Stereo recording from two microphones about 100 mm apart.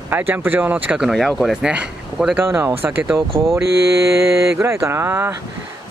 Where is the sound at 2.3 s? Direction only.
25° right (ahead or behind).